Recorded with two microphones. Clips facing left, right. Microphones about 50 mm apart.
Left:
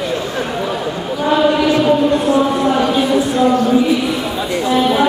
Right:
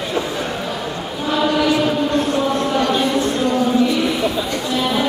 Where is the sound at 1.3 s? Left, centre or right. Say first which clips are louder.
Left 3 dB; centre.